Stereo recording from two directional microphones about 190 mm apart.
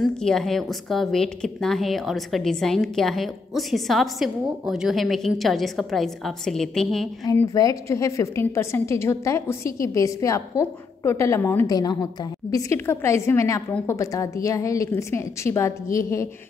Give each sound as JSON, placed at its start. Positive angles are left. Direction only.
{"t": 0.0, "sound": "speech", "side_deg": 5}
{"t": 7.2, "sound": "a woman's voice", "side_deg": 20}